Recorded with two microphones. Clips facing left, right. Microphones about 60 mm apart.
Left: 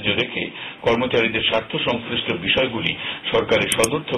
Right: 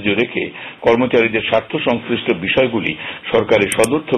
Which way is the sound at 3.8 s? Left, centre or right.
Right.